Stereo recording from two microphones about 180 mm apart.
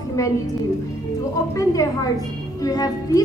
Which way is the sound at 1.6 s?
20° left (ahead or behind).